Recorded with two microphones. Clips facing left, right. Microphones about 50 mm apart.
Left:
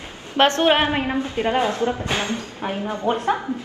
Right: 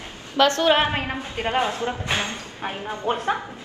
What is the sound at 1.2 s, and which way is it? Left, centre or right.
A woman's voice, right.